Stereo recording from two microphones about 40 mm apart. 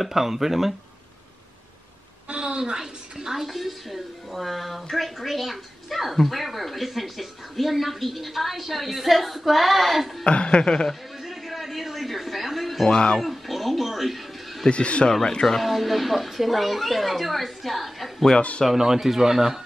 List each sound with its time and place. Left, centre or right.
0.0 s speech: centre
2.2 s a woman's voice: right; by 10.2 s centre
10.2 s chuckle: left
10.9 s a sound: centre
12.8 s chuckle: left
13.2 s music: centre
14.7 s chuckle: left
15.4 s speech: centre